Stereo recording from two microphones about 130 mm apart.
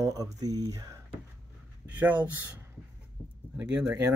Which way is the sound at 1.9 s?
15° right (ahead or behind).